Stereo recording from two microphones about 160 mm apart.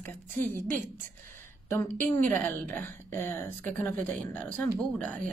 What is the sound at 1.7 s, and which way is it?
A woman's voice, 15° left (ahead or behind).